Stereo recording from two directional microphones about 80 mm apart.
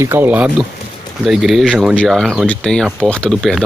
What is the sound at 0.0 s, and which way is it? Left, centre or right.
Speech, right.